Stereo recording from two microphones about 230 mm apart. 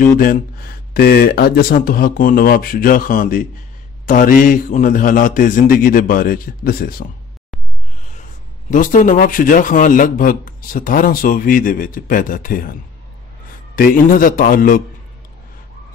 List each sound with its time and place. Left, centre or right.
0.0 s speech: left
8.6 s speech: left
13.7 s speech: left